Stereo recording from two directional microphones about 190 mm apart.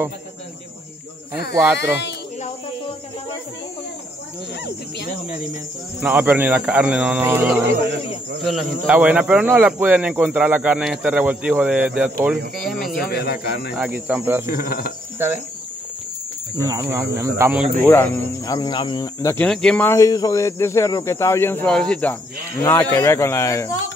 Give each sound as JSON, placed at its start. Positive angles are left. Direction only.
{"t": 1.5, "sound": "speech", "side_deg": -10}
{"t": 1.8, "sound": "speech", "side_deg": 65}
{"t": 5.9, "sound": "speech", "side_deg": -10}
{"t": 12.9, "sound": "speech", "side_deg": 55}
{"t": 13.7, "sound": "speech", "side_deg": -5}
{"t": 14.5, "sound": "speech", "side_deg": 50}
{"t": 16.5, "sound": "speech", "side_deg": -20}
{"t": 17.8, "sound": "speech", "side_deg": 10}
{"t": 19.3, "sound": "speech", "side_deg": 5}